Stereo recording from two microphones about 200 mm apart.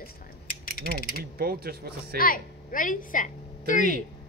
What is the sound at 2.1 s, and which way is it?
A woman's voice, 45° left (ahead or behind).